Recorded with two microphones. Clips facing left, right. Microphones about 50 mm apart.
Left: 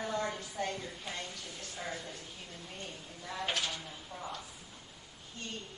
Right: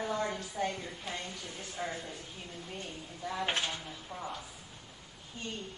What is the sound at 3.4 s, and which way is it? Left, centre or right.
Speech, right.